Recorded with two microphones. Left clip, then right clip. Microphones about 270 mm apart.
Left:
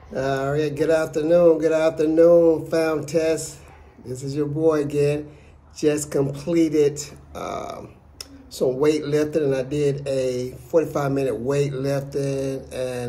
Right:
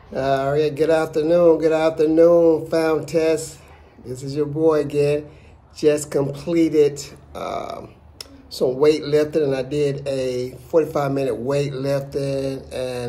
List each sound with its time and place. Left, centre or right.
0.1 s speech: centre